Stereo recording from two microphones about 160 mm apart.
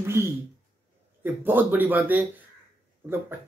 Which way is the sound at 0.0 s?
15° right (ahead or behind).